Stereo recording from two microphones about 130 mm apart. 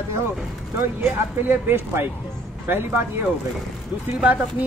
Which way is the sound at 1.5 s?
15° right (ahead or behind).